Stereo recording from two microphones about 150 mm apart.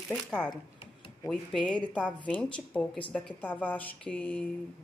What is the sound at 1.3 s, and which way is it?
Speech, 5° left (ahead or behind).